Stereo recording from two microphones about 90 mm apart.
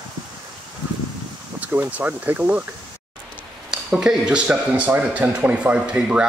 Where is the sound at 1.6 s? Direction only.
15° right (ahead or behind).